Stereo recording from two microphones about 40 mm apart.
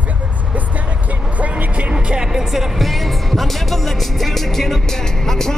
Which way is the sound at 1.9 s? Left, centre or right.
Right.